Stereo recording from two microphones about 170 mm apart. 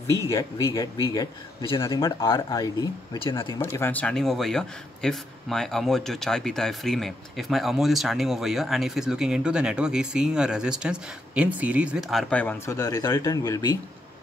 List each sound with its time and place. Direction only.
0.3 s a man's voice: 20° left (ahead or behind)
3.6 s speech: 15° left (ahead or behind)